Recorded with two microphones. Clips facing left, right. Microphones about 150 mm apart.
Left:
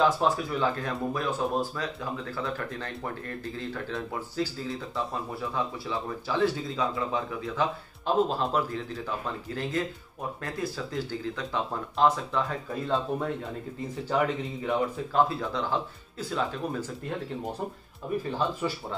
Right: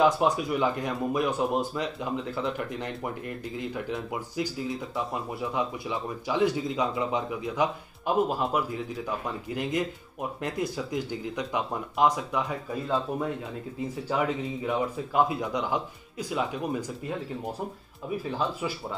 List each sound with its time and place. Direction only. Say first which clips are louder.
0.0 s speech: right 2 dB; 15° right (ahead or behind)
15.2 s speech: right 1 dB; 15° right (ahead or behind)